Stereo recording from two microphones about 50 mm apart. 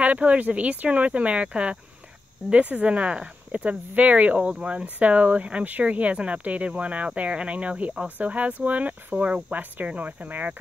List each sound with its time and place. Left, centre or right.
0.0 s speech: right